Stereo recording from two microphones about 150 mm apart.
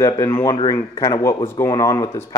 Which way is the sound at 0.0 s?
20° left (ahead or behind).